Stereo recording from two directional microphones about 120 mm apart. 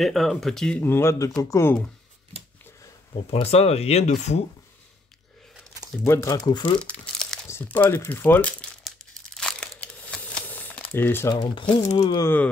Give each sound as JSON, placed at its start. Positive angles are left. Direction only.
{"t": 0.0, "sound": "speech", "side_deg": 0}
{"t": 0.8, "sound": "speech", "side_deg": 20}
{"t": 3.3, "sound": "speech", "side_deg": 55}
{"t": 6.0, "sound": "speech", "side_deg": 25}
{"t": 6.8, "sound": "crumpling", "side_deg": 5}
{"t": 7.4, "sound": "speech", "side_deg": 20}
{"t": 8.8, "sound": "crumpling", "side_deg": 5}
{"t": 11.2, "sound": "speech", "side_deg": 35}
{"t": 11.8, "sound": "speech", "side_deg": 75}